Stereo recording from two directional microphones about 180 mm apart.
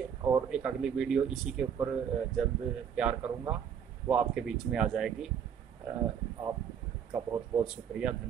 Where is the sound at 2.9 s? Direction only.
5° right (ahead or behind).